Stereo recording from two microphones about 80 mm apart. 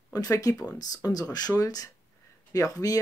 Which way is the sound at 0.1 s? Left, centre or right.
Left.